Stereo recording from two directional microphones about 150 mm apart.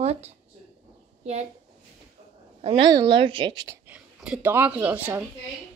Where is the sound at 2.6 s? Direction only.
45° right (ahead or behind).